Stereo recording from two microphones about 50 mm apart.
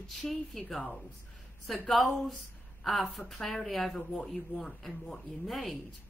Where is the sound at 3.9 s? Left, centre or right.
Centre.